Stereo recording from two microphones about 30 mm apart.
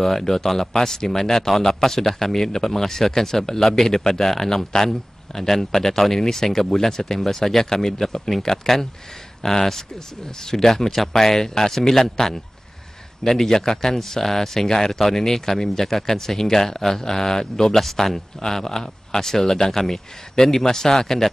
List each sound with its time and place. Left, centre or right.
0.0 s a man's voice: centre
17.7 s a man's voice: centre